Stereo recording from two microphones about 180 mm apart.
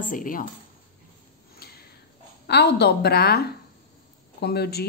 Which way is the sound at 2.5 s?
70° left (ahead or behind).